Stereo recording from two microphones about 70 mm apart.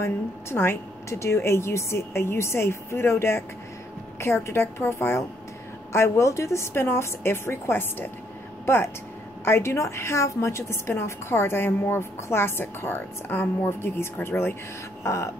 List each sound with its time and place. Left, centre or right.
0.0 s a woman's voice: left
9.4 s a woman's voice: left